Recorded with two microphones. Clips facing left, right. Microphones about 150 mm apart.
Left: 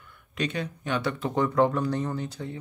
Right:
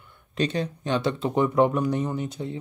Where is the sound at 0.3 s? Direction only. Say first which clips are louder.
Right 4 dB; 35° right (ahead or behind).